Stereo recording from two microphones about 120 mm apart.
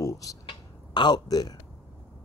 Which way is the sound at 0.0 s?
30° left (ahead or behind).